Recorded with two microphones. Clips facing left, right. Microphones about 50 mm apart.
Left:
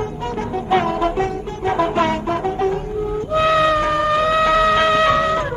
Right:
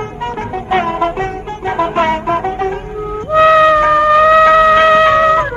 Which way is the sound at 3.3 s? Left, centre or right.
Right.